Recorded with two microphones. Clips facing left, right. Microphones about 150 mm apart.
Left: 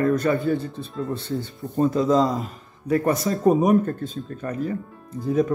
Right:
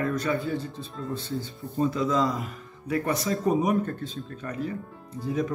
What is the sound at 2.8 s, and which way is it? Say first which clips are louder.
Speech: left 6 dB; 45° left (ahead or behind).